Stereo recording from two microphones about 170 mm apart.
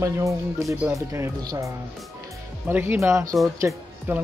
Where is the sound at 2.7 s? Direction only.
10° right (ahead or behind).